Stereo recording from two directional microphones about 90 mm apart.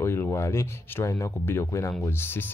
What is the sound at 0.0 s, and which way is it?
Speech, 30° left (ahead or behind).